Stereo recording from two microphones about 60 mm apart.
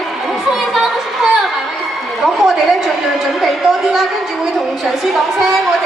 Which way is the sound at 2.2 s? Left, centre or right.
Centre.